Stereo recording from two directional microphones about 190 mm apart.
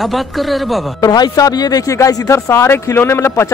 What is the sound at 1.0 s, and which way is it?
Speech, 20° left (ahead or behind).